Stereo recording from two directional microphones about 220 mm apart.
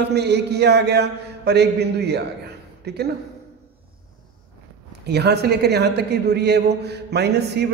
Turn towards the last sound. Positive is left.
turn(degrees=-50)  # may be behind; listen again after turning